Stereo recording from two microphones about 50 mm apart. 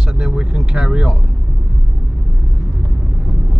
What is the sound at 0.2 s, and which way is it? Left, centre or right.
Speech, centre.